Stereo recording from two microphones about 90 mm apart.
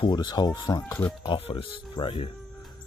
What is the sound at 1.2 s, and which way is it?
Speech, 85° left.